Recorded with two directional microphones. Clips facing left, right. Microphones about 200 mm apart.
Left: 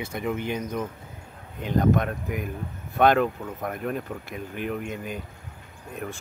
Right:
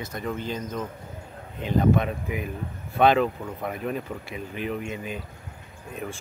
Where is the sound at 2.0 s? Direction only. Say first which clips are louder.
Even; centre (ahead or behind).